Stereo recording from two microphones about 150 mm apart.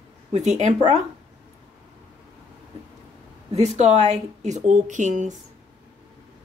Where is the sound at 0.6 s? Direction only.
50° right (ahead or behind).